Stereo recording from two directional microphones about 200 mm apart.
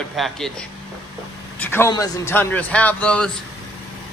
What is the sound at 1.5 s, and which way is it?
Speech, 10° left (ahead or behind).